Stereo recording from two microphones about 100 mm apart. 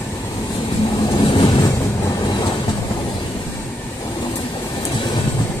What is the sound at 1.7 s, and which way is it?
Vehicle, 30° left (ahead or behind).